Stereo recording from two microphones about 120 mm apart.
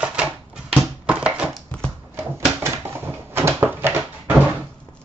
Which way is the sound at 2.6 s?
20° right (ahead or behind).